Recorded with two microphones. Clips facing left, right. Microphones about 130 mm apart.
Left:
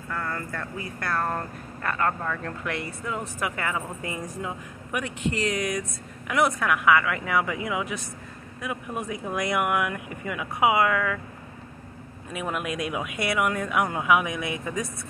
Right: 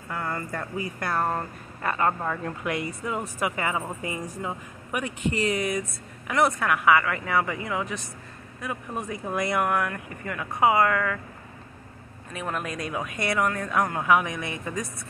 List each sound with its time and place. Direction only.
0.1 s speech: 15° right (ahead or behind); by 11.1 s 5° left (ahead or behind)
12.3 s speech: 10° left (ahead or behind)